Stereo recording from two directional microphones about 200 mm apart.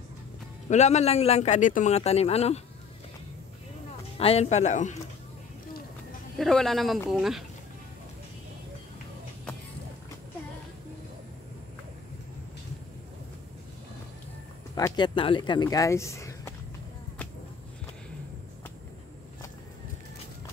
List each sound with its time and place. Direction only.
0.7 s a man's voice: 35° left (ahead or behind)
4.2 s a man's voice: 30° left (ahead or behind)
6.3 s speech: centre (ahead or behind)
14.8 s speech: 20° left (ahead or behind)